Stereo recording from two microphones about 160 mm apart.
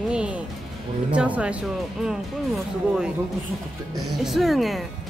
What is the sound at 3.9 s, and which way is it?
Speech, centre (ahead or behind).